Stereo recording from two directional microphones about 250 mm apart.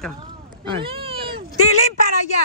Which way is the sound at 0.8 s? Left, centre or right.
Right.